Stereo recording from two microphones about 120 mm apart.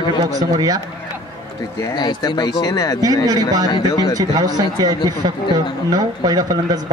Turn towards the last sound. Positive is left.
turn(degrees=-30)  # may be behind; listen again after turning